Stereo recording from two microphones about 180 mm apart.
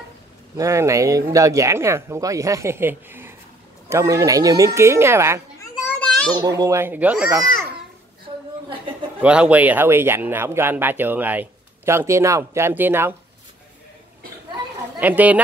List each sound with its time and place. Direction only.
0.6 s speech: 15° right (ahead or behind)
5.6 s children playing: 5° left (ahead or behind)
6.3 s speech: 20° right (ahead or behind)
8.3 s a sound: 20° right (ahead or behind)
9.2 s speech: 5° right (ahead or behind)
15.0 s speech: 10° right (ahead or behind)